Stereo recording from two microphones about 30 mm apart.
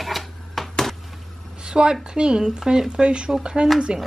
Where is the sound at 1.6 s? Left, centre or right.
Right.